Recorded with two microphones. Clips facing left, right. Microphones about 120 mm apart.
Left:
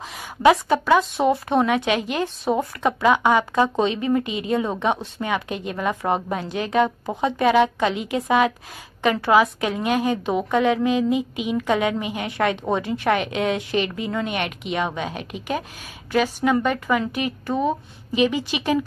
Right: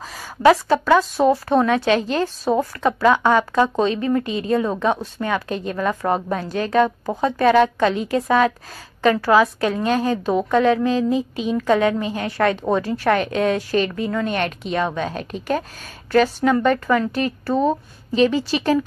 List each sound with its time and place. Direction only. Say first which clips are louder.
0.4 s a woman's voice: right 2 dB; 15° left (ahead or behind)